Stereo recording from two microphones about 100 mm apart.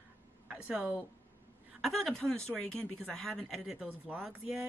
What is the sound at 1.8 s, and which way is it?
A woman's voice, 5° left (ahead or behind).